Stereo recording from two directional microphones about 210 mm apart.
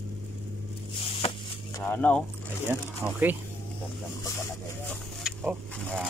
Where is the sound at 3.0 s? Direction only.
10° right (ahead or behind).